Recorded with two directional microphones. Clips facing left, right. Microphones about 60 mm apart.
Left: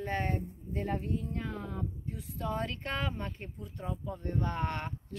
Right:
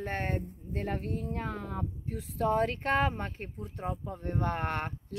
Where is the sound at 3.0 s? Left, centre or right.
Right.